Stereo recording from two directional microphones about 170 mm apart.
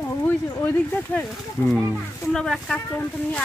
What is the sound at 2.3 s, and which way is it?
Speech, 5° left (ahead or behind).